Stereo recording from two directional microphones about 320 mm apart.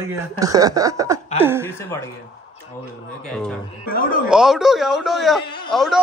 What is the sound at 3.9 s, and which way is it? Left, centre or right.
Speech, left.